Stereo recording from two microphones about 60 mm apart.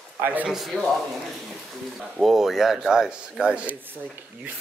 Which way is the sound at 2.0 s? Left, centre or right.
Centre.